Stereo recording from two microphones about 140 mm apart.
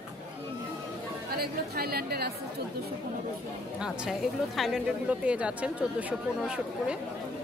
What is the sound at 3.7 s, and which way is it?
Speech, 5° right (ahead or behind).